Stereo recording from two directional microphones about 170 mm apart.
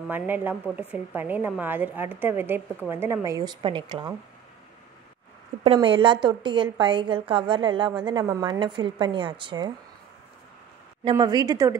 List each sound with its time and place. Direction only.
0.1 s a woman's voice: 10° right (ahead or behind); by 4.1 s 25° right (ahead or behind)
5.6 s a woman's voice: 35° right (ahead or behind)
11.1 s a woman's voice: 25° right (ahead or behind)